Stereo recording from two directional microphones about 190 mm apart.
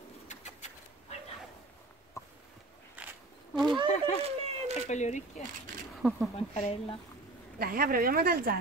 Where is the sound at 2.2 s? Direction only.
15° left (ahead or behind).